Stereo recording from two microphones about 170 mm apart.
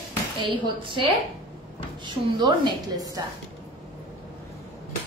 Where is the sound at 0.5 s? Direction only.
30° right (ahead or behind).